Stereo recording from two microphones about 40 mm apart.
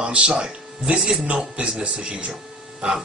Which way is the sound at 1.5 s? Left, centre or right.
Right.